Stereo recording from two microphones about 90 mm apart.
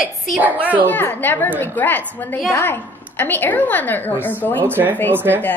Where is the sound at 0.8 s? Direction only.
20° left (ahead or behind).